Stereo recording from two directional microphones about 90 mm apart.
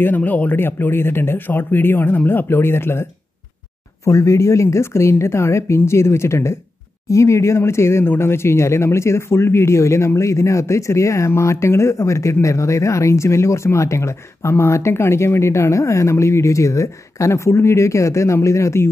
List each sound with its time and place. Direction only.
0.0 s speech: 20° left (ahead or behind)